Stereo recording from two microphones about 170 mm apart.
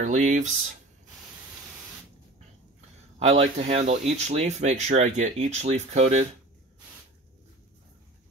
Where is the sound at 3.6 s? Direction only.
40° right (ahead or behind).